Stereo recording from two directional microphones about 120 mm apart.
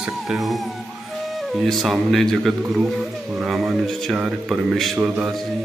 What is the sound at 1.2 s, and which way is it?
A man's voice, centre (ahead or behind).